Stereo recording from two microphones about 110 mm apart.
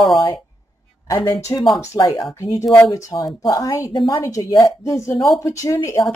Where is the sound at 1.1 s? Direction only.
40° left (ahead or behind).